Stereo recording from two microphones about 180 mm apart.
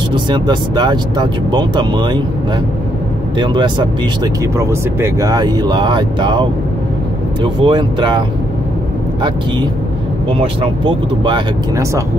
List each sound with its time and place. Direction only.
0.1 s speech: 25° right (ahead or behind)
3.3 s speech: 25° right (ahead or behind)
10.4 s speech: 30° right (ahead or behind)